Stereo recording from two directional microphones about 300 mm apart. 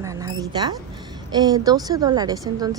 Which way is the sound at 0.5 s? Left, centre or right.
Centre.